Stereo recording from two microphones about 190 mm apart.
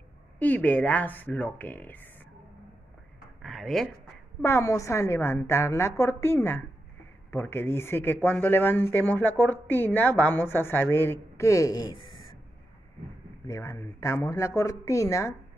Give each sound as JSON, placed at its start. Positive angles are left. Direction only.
{"t": 0.4, "sound": "speech", "side_deg": 10}
{"t": 3.4, "sound": "a sound", "side_deg": 0}
{"t": 4.4, "sound": "speech", "side_deg": 15}
{"t": 13.5, "sound": "speech", "side_deg": 15}